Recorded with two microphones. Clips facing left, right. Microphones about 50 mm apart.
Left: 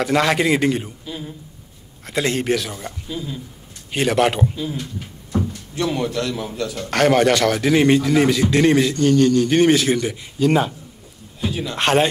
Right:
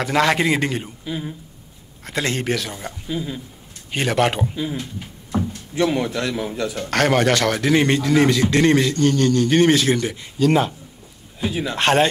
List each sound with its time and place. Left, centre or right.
0.0 s a man's voice: centre
2.0 s a man's voice: centre
2.7 s speech: centre
3.9 s a man's voice: centre
5.8 s a man's voice: centre
6.9 s a man's voice: centre
11.7 s a man's voice: centre